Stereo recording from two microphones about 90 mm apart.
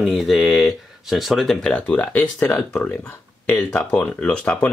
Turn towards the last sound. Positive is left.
turn(degrees=10)  # may be behind; listen again after turning